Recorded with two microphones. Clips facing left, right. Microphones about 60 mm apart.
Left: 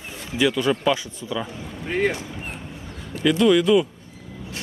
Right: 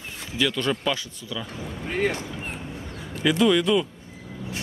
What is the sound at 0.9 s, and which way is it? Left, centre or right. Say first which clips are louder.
Speech: left 5 dB; left.